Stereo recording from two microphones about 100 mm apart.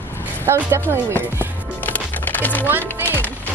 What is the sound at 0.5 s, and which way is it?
Speech, 25° right (ahead or behind).